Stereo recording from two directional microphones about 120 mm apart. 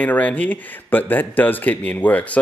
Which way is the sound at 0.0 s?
15° left (ahead or behind).